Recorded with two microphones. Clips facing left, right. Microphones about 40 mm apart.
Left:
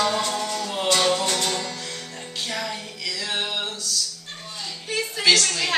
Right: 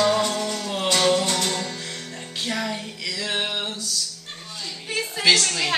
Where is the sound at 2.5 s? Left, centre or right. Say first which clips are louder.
Right 3 dB; centre.